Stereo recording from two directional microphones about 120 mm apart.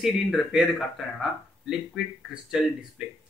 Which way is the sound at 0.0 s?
5° right (ahead or behind).